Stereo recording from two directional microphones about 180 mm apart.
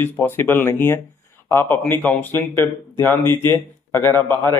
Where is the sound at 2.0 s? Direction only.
10° left (ahead or behind).